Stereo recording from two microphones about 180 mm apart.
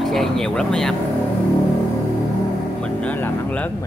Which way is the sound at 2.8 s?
5° left (ahead or behind).